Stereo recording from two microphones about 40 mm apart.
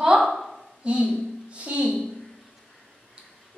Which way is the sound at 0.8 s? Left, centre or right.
Right.